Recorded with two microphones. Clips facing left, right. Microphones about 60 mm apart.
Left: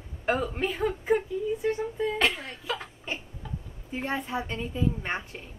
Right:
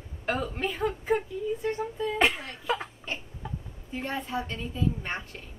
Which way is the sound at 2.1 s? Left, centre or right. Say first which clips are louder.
Right 1 dB; centre.